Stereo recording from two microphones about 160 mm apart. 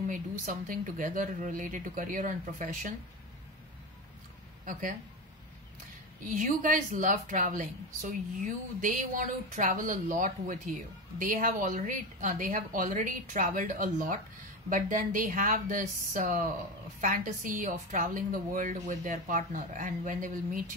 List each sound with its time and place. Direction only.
0.1 s a woman's voice: 55° right (ahead or behind)
4.6 s a woman's voice: 55° right (ahead or behind)
6.2 s a woman's voice: 55° right (ahead or behind)